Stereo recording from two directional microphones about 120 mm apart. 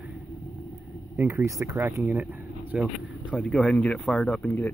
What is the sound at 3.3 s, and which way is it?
Speech, 10° left (ahead or behind).